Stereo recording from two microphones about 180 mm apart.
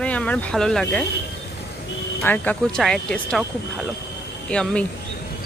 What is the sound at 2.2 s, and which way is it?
Speech, 10° left (ahead or behind).